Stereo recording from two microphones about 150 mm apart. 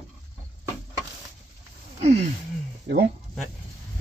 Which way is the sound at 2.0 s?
45° right (ahead or behind).